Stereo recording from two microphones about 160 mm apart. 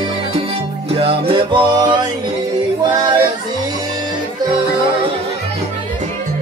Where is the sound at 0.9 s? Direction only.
35° right (ahead or behind).